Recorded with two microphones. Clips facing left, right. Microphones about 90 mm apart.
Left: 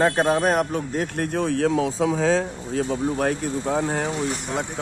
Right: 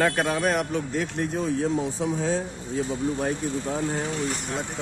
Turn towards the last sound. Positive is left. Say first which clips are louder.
# left 4 dB
turn(degrees=65)  # may be behind; listen again after turning